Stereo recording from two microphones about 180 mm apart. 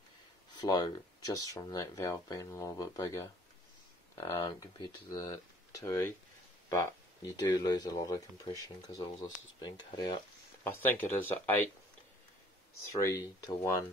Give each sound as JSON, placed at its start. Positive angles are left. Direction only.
{"t": 0.6, "sound": "speech", "side_deg": 25}
{"t": 10.6, "sound": "speech", "side_deg": 10}
{"t": 12.9, "sound": "speech", "side_deg": 15}